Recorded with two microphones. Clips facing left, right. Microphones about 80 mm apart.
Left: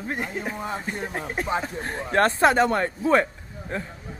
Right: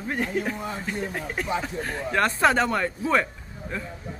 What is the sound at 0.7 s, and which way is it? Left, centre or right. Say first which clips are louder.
A man's voice: even; left.